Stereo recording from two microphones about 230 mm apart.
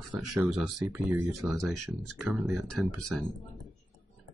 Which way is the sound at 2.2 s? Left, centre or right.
Centre.